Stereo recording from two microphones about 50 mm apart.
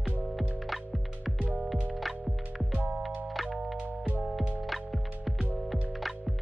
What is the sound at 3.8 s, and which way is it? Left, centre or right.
Music, right.